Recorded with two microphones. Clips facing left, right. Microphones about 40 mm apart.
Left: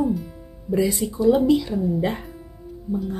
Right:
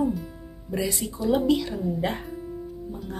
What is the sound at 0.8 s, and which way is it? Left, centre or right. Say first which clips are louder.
Speech: left 8 dB; centre.